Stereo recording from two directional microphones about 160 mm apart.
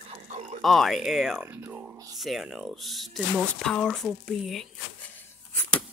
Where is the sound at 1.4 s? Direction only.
10° right (ahead or behind).